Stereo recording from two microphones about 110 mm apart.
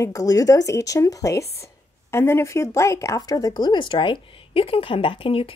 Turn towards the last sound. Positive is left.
turn(degrees=60)  # may be behind; listen again after turning